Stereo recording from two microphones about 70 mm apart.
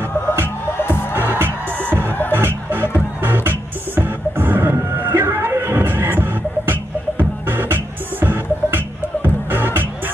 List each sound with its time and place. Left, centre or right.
1.4 s music: right
2.0 s music: left
2.3 s music: right